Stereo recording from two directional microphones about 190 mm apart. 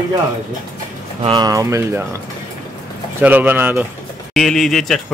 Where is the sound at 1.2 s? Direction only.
20° right (ahead or behind).